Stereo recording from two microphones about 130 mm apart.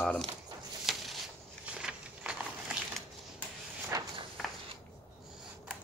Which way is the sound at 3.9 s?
25° right (ahead or behind).